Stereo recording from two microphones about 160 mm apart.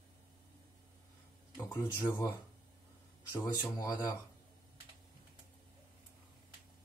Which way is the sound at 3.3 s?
20° left (ahead or behind).